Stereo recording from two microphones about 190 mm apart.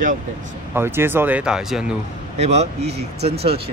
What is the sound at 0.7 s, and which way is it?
Speech, 10° right (ahead or behind).